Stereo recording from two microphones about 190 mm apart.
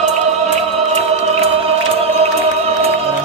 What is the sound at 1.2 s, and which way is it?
Music, 30° right (ahead or behind).